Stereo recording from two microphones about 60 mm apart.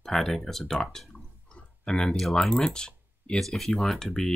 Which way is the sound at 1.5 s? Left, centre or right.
Centre.